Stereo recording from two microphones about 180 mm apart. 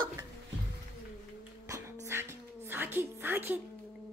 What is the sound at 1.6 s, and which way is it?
Music, 15° right (ahead or behind).